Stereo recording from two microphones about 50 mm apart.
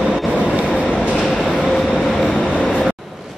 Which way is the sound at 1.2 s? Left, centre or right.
Centre.